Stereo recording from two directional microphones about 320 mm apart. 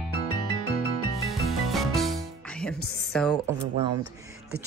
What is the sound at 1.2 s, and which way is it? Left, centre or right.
Music, centre.